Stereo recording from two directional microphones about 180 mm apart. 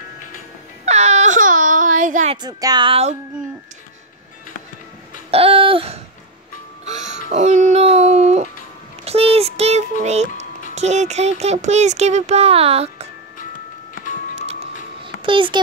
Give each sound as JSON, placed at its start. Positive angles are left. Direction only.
{"t": 0.8, "sound": "baby cry", "side_deg": -40}
{"t": 2.4, "sound": "speech", "side_deg": -25}
{"t": 5.3, "sound": "a sound", "side_deg": -30}
{"t": 6.9, "sound": "music", "side_deg": -40}
{"t": 7.2, "sound": "a sound", "side_deg": -40}
{"t": 9.0, "sound": "child singing", "side_deg": -35}
{"t": 10.0, "sound": "music", "side_deg": -40}
{"t": 10.7, "sound": "speech", "side_deg": -40}
{"t": 14.3, "sound": "music", "side_deg": -35}
{"t": 15.2, "sound": "speech", "side_deg": -30}